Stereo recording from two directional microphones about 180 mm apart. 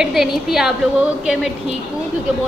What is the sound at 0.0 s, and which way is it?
Speech, centre (ahead or behind).